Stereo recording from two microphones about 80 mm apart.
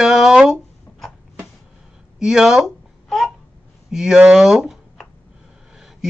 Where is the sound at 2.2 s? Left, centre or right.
Centre.